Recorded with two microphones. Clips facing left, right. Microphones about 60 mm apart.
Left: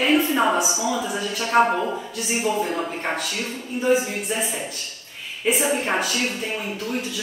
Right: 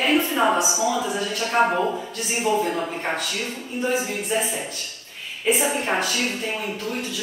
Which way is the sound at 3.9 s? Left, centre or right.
Centre.